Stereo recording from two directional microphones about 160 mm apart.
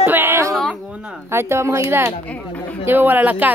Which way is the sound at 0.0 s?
15° right (ahead or behind).